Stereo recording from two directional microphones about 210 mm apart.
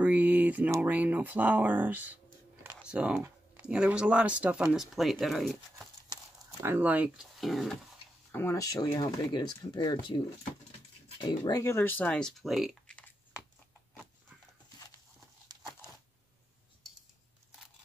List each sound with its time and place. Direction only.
0.0 s speech: 5° right (ahead or behind)
6.6 s speech: 10° right (ahead or behind)
8.3 s speech: 10° left (ahead or behind)